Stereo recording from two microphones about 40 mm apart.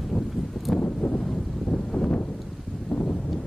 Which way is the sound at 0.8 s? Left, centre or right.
Left.